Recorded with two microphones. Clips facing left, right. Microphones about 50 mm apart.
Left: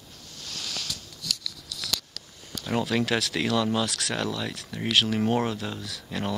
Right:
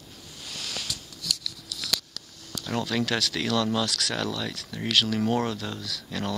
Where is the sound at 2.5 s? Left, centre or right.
Centre.